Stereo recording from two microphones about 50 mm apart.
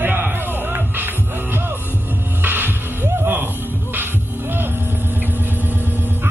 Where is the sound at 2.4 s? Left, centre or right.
Right.